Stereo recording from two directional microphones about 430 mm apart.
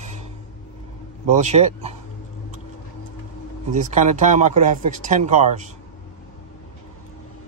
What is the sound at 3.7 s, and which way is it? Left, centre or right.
Speech, centre.